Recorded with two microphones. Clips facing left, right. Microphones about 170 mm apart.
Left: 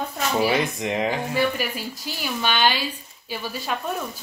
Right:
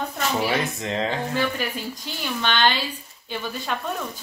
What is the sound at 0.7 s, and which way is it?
A woman's voice, 15° left (ahead or behind).